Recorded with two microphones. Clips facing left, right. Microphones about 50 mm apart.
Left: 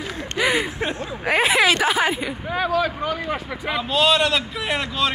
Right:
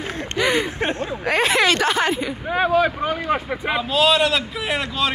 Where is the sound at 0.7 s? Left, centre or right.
Right.